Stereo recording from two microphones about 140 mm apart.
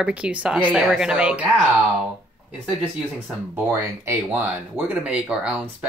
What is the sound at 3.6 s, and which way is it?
Speech, 20° right (ahead or behind).